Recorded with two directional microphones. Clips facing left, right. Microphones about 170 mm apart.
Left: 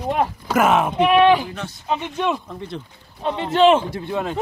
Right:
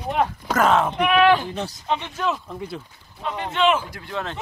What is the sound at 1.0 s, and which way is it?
Speech, 30° left (ahead or behind).